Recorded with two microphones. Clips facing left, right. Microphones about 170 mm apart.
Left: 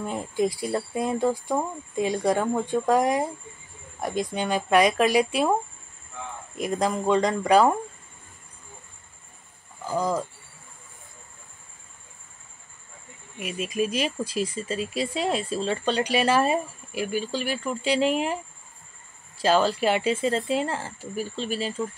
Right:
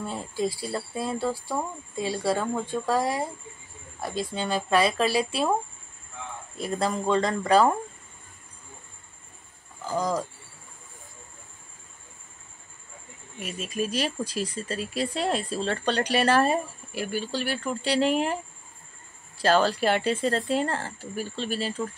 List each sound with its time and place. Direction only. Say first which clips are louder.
0.0 s speech: left 3 dB; 15° left (ahead or behind)
9.8 s speech: left 1 dB; 10° left (ahead or behind)
13.4 s speech: left 3 dB; 10° left (ahead or behind)
14.8 s speech: even; 40° right (ahead or behind)
15.6 s speech: left 1 dB; 10° left (ahead or behind)
16.9 s speech: left 2 dB; 40° right (ahead or behind)
17.6 s speech: left 1 dB; centre (ahead or behind)
19.4 s speech: left 1 dB; 10° left (ahead or behind)
21.5 s speech: right 1 dB; 40° right (ahead or behind)